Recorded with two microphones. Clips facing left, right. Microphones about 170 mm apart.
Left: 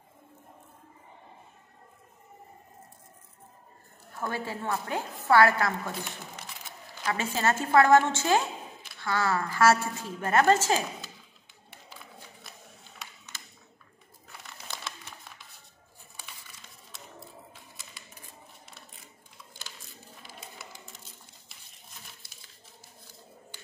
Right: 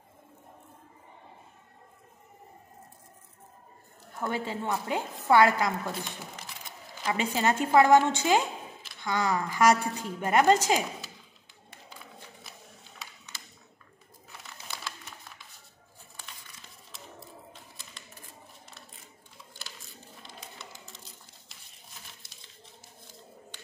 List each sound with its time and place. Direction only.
4.2 s a woman's voice: 20° right (ahead or behind)
7.1 s a woman's voice: 15° right (ahead or behind)
14.4 s crumpling: centre (ahead or behind)
16.9 s a sound: centre (ahead or behind)
20.2 s bird: 5° left (ahead or behind)